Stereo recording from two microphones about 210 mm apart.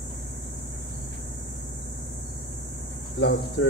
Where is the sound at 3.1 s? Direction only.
60° left (ahead or behind).